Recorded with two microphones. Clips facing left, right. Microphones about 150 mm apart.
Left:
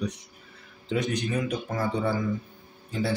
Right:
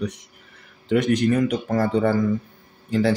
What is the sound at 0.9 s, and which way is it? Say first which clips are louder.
Speech: right 9 dB; 65° right (ahead or behind).